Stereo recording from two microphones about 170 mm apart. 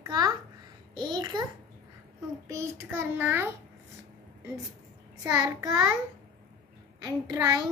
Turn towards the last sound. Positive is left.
turn(degrees=-25)  # may be behind; listen again after turning